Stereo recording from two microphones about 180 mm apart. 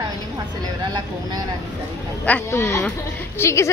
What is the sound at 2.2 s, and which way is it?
Speech, 10° left (ahead or behind).